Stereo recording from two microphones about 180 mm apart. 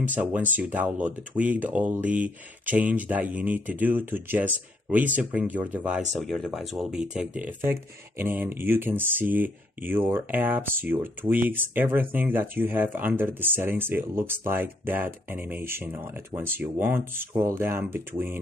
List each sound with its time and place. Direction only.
0.1 s speech: 10° right (ahead or behind)